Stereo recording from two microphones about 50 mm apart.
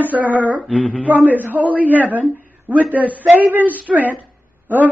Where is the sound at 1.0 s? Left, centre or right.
Right.